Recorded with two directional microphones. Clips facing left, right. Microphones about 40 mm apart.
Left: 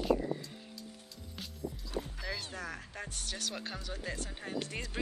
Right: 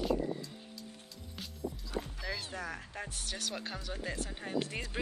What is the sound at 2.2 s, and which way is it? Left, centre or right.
Speech, centre.